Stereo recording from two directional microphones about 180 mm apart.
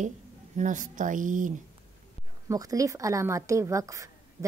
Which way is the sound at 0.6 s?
45° right (ahead or behind).